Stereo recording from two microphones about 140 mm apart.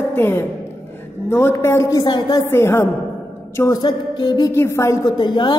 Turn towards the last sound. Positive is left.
turn(degrees=35)  # may be behind; listen again after turning